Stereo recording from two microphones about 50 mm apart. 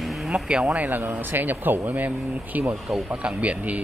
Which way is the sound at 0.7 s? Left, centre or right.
Right.